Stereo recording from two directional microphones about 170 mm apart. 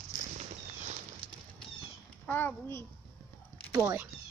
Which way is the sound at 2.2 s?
10° left (ahead or behind).